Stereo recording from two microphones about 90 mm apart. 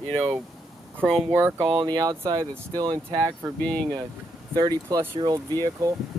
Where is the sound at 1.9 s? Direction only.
50° right (ahead or behind).